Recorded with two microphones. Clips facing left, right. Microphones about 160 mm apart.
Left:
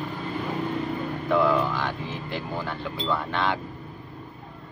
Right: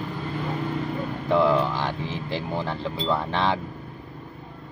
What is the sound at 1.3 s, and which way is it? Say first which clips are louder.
Speech: right 2 dB; 25° right (ahead or behind).